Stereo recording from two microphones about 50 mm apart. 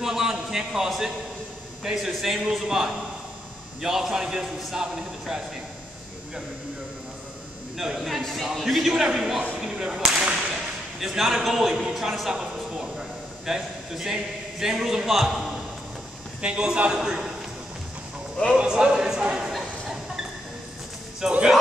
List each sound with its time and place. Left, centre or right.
0.0 s a man's voice: centre
7.7 s a man's voice: centre
13.5 s a man's voice: centre
16.3 s a man's voice: right
18.6 s a man's voice: centre
21.2 s a man's voice: centre